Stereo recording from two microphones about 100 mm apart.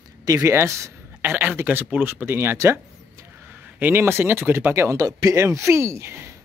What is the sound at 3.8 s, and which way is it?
Speech, 20° right (ahead or behind).